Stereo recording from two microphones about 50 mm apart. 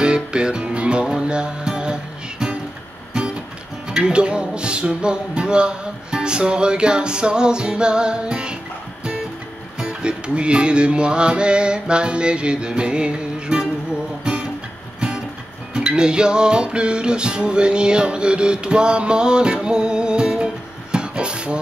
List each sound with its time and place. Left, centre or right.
0.0 s music: centre
3.9 s music: centre
9.8 s music: right
15.7 s music: centre